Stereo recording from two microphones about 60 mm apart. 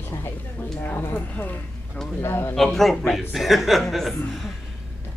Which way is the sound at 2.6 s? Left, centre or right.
Centre.